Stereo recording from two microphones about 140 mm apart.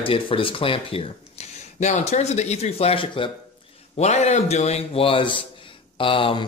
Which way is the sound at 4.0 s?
55° left (ahead or behind).